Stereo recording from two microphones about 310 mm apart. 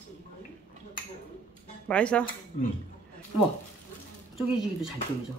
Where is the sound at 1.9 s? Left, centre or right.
Centre.